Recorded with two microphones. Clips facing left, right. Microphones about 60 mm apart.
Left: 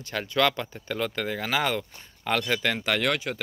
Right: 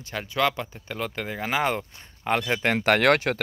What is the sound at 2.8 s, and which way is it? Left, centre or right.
Speech, right.